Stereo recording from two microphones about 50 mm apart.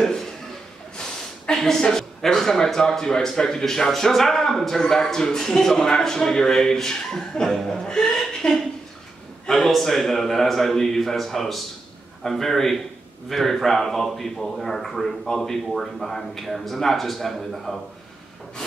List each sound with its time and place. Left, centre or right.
0.0 s a man's voice: centre
1.5 s a man's voice: centre